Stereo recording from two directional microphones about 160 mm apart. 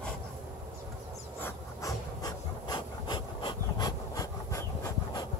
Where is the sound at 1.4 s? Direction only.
25° left (ahead or behind).